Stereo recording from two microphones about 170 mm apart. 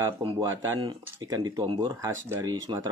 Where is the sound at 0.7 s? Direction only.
25° right (ahead or behind).